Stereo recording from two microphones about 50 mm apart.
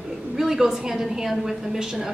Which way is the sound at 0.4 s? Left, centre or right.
Centre.